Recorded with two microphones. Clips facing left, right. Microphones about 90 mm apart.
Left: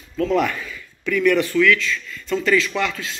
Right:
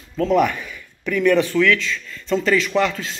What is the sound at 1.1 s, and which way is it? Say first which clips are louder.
Speech: right 1 dB; 30° right (ahead or behind).